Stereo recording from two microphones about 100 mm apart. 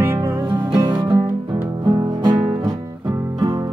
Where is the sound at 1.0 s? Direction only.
65° right (ahead or behind).